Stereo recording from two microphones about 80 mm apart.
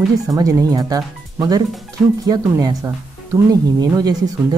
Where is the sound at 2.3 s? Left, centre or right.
Right.